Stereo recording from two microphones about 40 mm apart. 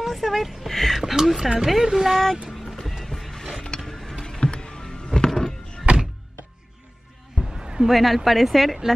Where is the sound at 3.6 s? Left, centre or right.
Centre.